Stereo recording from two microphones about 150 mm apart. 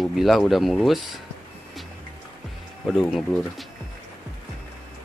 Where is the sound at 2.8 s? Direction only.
Centre (ahead or behind).